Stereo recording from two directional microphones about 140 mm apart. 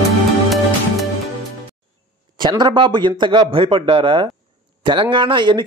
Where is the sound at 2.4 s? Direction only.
35° right (ahead or behind).